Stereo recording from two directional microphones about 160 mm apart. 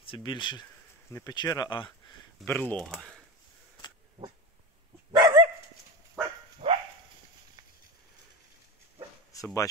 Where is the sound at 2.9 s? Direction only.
Centre (ahead or behind).